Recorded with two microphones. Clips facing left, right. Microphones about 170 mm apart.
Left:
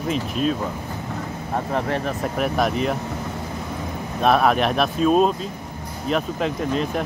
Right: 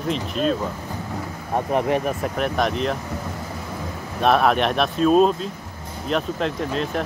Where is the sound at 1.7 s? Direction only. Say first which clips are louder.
Right 4 dB; 15° right (ahead or behind).